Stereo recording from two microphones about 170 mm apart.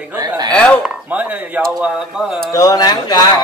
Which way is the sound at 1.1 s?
10° right (ahead or behind).